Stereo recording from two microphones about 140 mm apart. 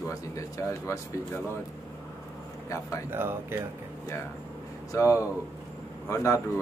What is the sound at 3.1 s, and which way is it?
Speech, 15° right (ahead or behind).